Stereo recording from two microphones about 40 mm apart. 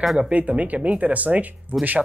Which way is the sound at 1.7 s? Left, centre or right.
Right.